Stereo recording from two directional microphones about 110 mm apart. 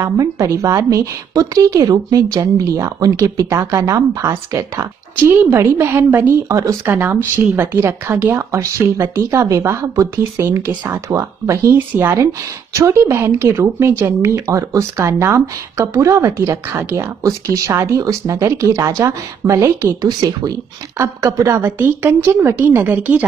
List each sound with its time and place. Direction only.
0.0 s a woman's voice: 25° right (ahead or behind)
6.5 s a woman's voice: 30° right (ahead or behind)